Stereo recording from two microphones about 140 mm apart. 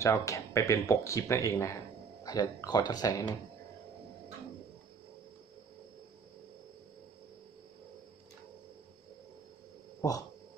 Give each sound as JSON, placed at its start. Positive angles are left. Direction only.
{"t": 0.0, "sound": "speech", "side_deg": 25}